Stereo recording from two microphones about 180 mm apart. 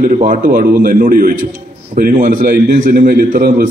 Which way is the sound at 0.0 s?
50° right (ahead or behind).